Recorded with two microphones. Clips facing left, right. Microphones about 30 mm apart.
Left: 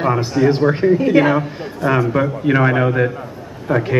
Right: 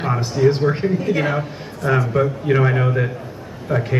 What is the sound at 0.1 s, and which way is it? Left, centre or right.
A man's voice, centre.